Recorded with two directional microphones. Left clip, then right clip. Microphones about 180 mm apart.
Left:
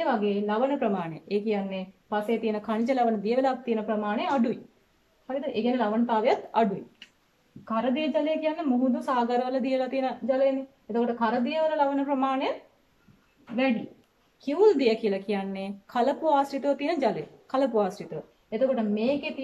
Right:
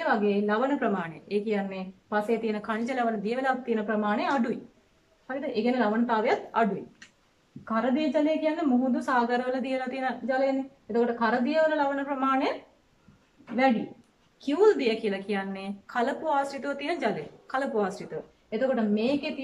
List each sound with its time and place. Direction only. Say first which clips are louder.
0.0 s a woman's voice: right 1 dB; 10° left (ahead or behind)
14.4 s a woman's voice: left 1 dB; 15° left (ahead or behind)